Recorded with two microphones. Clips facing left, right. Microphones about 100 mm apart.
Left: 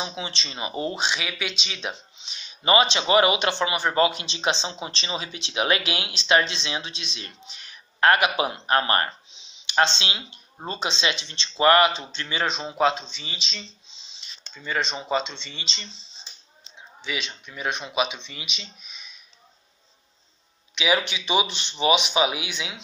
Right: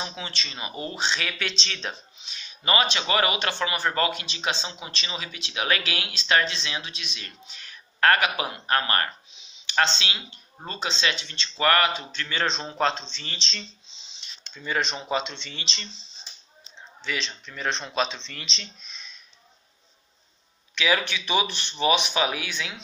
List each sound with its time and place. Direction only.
0.0 s speech: 20° left (ahead or behind)
1.0 s speech: 10° left (ahead or behind)
2.2 s speech: 20° left (ahead or behind); by 15.9 s centre (ahead or behind)
17.0 s speech: 10° left (ahead or behind)
20.7 s speech: 15° left (ahead or behind)